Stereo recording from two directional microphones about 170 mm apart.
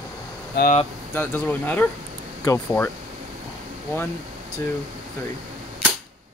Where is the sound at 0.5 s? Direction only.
75° left (ahead or behind).